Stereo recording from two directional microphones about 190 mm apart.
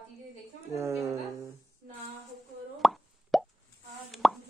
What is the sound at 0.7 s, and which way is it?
Speech, 15° right (ahead or behind).